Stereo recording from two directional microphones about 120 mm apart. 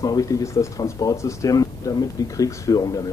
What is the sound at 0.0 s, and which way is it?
A man's voice, 30° left (ahead or behind).